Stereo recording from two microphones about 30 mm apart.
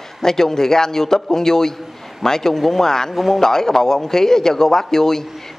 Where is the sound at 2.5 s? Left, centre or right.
Centre.